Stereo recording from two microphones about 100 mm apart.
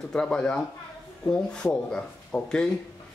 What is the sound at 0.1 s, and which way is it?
Speech, 10° left (ahead or behind).